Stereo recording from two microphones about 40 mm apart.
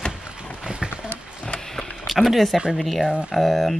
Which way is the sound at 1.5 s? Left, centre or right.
Centre.